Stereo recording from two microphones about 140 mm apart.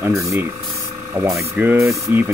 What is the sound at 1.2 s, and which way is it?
Speech, centre (ahead or behind).